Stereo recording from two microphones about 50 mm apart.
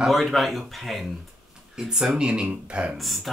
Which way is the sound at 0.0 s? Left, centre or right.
Centre.